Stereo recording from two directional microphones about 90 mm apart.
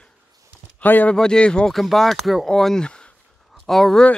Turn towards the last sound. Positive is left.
turn(degrees=0)  # may be behind; listen again after turning